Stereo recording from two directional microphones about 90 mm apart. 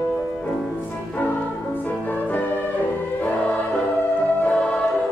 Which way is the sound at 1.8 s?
20° left (ahead or behind).